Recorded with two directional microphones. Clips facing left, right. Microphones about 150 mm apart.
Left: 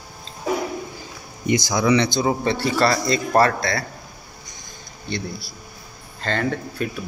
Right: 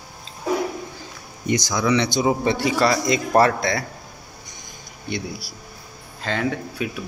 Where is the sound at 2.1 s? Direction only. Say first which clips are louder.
Right 1 dB; 15° right (ahead or behind).